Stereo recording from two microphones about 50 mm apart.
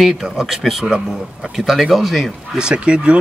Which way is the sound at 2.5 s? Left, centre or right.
Centre.